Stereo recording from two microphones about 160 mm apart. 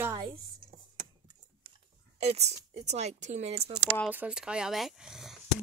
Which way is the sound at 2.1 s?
40° right (ahead or behind).